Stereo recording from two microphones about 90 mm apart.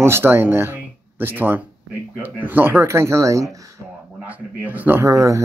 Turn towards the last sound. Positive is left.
turn(degrees=-35)  # may be behind; listen again after turning